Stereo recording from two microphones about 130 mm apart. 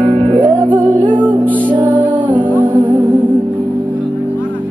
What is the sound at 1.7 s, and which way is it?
Music, 10° right (ahead or behind).